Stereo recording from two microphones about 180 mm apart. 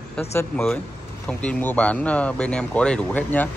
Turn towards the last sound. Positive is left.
turn(degrees=10)  # may be behind; listen again after turning